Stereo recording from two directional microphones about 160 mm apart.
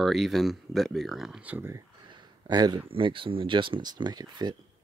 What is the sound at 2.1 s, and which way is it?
Speech, 25° right (ahead or behind).